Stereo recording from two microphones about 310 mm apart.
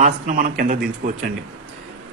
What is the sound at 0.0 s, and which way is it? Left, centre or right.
Speech, right.